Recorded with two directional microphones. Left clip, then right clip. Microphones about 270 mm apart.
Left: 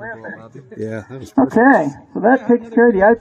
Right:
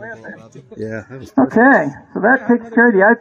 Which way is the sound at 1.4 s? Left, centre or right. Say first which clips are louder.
Right 1 dB; centre.